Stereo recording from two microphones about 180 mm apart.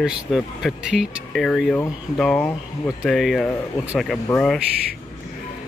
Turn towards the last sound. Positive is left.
turn(degrees=5)  # may be behind; listen again after turning